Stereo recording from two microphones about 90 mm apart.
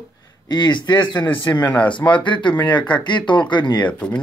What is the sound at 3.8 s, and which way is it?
Speech, 15° left (ahead or behind).